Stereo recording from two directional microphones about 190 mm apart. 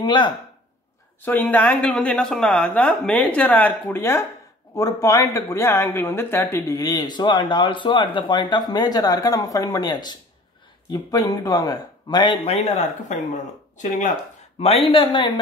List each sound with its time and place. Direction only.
0.0 s speech: 25° left (ahead or behind)
1.2 s speech: 10° left (ahead or behind)
13.3 s speech: 40° left (ahead or behind)
14.6 s speech: 30° left (ahead or behind)